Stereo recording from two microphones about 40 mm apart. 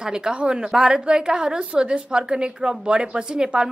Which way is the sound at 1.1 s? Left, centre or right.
Right.